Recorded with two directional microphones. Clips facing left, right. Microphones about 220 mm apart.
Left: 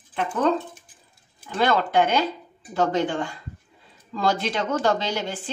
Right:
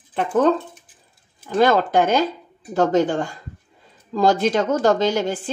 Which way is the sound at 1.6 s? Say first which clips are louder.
Right 4 dB; 45° right (ahead or behind).